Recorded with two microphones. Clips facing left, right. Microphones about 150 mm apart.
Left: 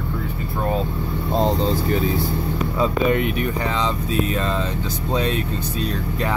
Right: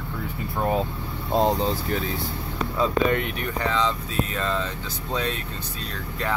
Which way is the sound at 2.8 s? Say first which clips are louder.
Left 3 dB; 10° left (ahead or behind).